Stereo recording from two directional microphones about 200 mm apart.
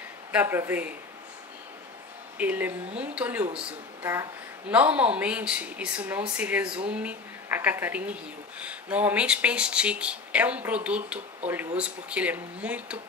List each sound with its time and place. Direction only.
0.3 s a woman's voice: 10° right (ahead or behind)
2.3 s a woman's voice: 10° right (ahead or behind)